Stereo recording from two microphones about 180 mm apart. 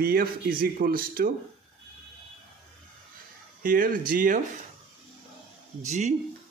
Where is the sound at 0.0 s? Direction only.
55° right (ahead or behind).